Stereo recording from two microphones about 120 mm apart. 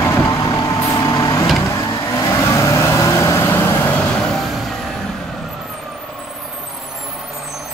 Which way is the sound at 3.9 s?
5° left (ahead or behind).